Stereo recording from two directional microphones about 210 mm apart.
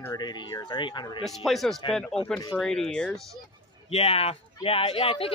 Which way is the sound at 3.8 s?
30° left (ahead or behind).